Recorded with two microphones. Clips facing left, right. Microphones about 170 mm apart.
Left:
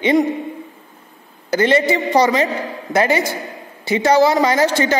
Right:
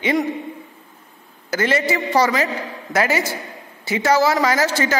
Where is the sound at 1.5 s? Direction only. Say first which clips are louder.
Left 5 dB; 30° left (ahead or behind).